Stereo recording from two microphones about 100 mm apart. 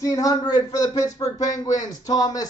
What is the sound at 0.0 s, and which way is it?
Speech, 35° left (ahead or behind).